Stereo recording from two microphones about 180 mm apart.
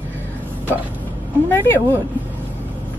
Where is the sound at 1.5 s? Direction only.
15° left (ahead or behind).